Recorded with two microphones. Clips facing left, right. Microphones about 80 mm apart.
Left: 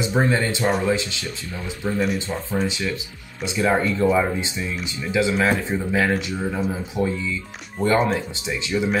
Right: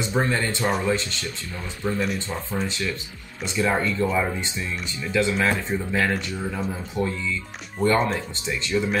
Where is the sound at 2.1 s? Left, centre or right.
Left.